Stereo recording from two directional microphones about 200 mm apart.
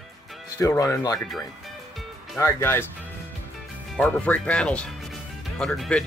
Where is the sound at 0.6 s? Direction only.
15° left (ahead or behind).